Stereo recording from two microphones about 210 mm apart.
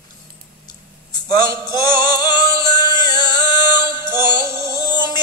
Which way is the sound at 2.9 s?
20° left (ahead or behind).